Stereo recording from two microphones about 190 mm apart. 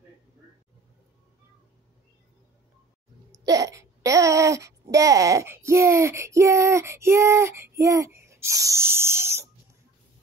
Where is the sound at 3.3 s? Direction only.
20° right (ahead or behind).